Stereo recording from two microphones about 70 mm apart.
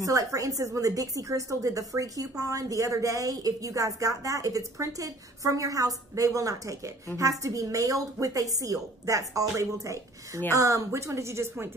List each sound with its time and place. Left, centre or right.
0.0 s a woman's voice: right